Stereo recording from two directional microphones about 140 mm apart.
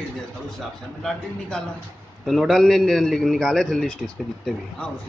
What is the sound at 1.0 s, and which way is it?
A man's voice, 5° left (ahead or behind).